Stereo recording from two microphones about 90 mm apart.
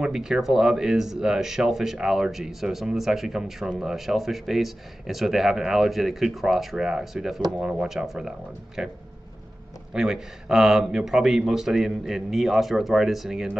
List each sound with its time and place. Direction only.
0.0 s speech: 5° right (ahead or behind)
9.9 s speech: 5° right (ahead or behind)